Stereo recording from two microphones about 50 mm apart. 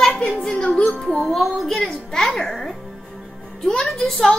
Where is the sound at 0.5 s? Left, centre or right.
Centre.